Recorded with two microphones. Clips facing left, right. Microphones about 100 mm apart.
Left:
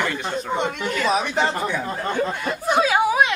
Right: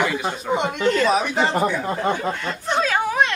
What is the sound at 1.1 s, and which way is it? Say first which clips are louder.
Speech: right 1 dB; centre (ahead or behind).